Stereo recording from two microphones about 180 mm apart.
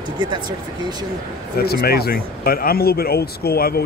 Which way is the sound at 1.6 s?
60° left (ahead or behind).